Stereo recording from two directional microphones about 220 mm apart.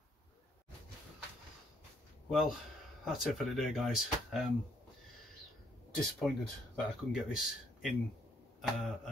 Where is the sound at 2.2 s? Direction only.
Centre (ahead or behind).